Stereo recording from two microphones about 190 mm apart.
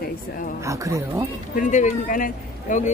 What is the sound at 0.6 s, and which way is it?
Speech, 15° right (ahead or behind).